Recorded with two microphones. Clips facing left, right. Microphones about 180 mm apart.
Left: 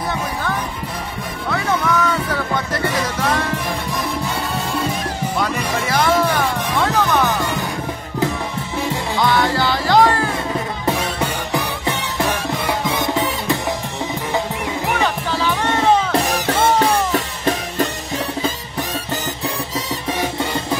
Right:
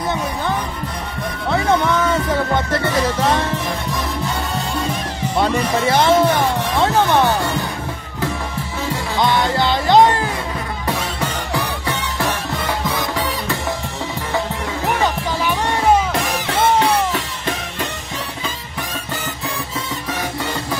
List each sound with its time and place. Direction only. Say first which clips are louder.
1.5 s music: right 3 dB; 25° right (ahead or behind)
5.4 s music: right 6 dB; 25° right (ahead or behind)
9.1 s music: even; 20° right (ahead or behind)
11.5 s music: left 1 dB; 20° left (ahead or behind)
15.0 s music: even; 15° right (ahead or behind)
16.1 s music: left 3 dB; 40° left (ahead or behind)